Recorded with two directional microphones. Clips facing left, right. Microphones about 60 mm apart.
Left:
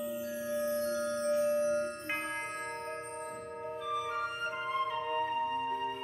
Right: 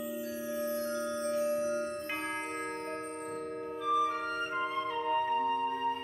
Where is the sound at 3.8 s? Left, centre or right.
Centre.